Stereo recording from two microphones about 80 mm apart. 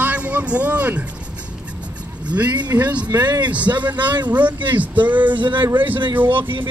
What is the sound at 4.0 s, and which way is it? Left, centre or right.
Speech, right.